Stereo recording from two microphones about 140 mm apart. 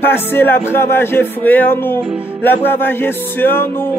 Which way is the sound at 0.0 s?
15° left (ahead or behind).